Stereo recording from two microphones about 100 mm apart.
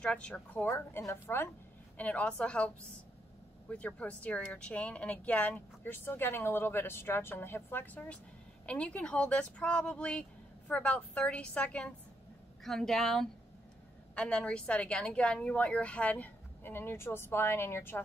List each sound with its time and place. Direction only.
0.0 s speech: 10° left (ahead or behind)
0.7 s a woman's voice: 25° left (ahead or behind); by 2.7 s 10° left (ahead or behind)
3.7 s speech: 15° left (ahead or behind)